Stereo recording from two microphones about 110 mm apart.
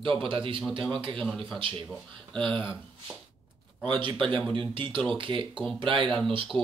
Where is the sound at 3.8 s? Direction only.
45° right (ahead or behind).